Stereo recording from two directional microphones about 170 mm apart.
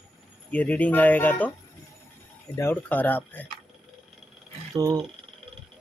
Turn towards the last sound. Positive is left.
turn(degrees=-20)  # may be behind; listen again after turning